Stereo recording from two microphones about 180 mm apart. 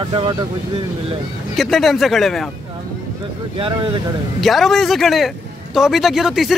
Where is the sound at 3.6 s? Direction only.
25° right (ahead or behind).